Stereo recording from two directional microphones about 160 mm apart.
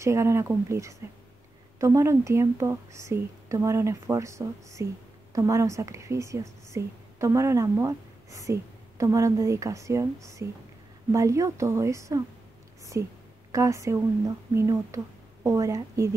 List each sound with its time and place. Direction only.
0.0 s a woman's voice: 15° right (ahead or behind)